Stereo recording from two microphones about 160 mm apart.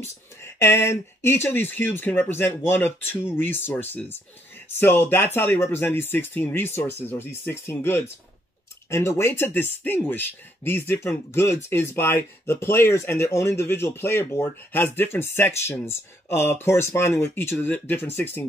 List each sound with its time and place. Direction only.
0.0 s speech: 15° left (ahead or behind)